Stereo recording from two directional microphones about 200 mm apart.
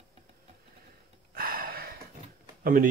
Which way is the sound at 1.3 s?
50° right (ahead or behind).